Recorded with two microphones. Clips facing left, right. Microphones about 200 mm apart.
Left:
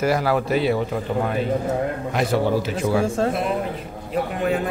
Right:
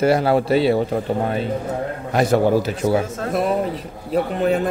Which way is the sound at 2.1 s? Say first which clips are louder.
Right 6 dB; 45° right (ahead or behind).